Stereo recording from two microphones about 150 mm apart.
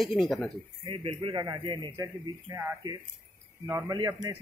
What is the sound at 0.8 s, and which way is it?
A man's voice, 40° right (ahead or behind).